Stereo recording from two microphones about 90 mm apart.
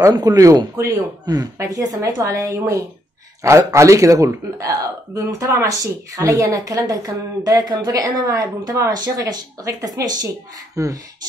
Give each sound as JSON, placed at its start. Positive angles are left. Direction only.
{"t": 0.1, "sound": "speech", "side_deg": -45}